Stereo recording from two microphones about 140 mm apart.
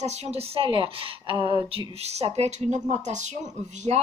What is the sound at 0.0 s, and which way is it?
A woman's voice, 50° right (ahead or behind).